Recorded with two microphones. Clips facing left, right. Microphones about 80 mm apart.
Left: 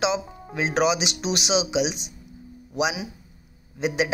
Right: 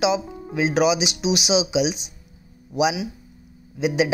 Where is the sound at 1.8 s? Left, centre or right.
Left.